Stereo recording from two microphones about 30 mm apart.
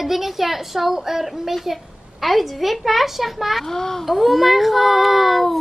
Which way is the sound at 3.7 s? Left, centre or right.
Centre.